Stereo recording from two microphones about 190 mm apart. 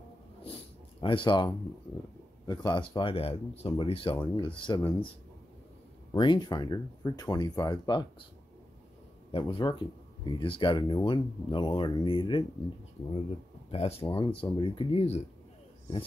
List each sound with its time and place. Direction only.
1.0 s speech: 25° left (ahead or behind)
6.1 s speech: 25° left (ahead or behind)
9.3 s speech: 25° left (ahead or behind)
13.7 s speech: 30° left (ahead or behind)